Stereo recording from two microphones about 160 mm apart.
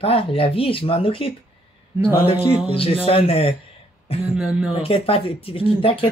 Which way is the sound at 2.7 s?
35° left (ahead or behind).